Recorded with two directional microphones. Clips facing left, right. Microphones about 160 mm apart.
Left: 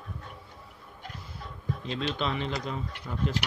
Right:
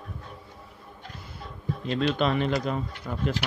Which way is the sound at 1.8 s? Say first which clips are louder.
Right 7 dB; 55° right (ahead or behind).